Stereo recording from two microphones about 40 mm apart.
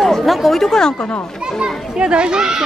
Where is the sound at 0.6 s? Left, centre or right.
Centre.